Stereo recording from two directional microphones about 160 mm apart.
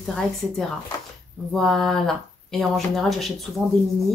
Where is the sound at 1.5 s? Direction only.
Centre (ahead or behind).